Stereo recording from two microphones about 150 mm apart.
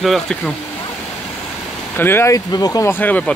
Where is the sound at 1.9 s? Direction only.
15° left (ahead or behind).